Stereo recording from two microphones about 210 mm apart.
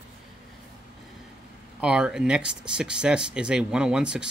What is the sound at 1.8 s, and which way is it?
Speech, 5° right (ahead or behind).